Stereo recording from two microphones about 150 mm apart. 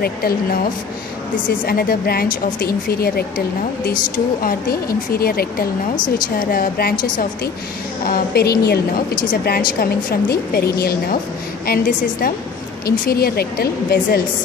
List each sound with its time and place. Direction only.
0.0 s a woman's voice: 90° left
1.7 s a woman's voice: 90° left
5.9 s a woman's voice: 30° left (ahead or behind)
6.3 s a woman's voice: 75° left (ahead or behind)
8.1 s a woman's voice: 90° left
11.6 s a woman's voice: 80° left
12.8 s a woman's voice: 90° left